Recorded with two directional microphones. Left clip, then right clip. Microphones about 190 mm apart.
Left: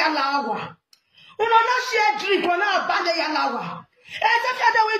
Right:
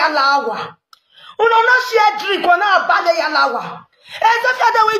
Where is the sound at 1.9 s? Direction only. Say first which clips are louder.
Right 6 dB; 50° right (ahead or behind).